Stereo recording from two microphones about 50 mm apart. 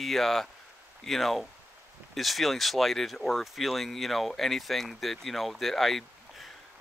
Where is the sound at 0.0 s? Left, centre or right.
Centre.